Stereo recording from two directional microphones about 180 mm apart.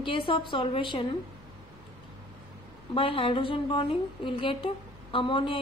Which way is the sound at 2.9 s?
30° left (ahead or behind).